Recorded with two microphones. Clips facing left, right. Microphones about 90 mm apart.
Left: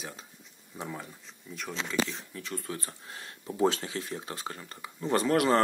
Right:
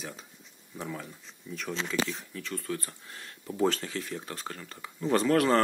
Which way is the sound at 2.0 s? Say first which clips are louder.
Right 2 dB; 15° left (ahead or behind).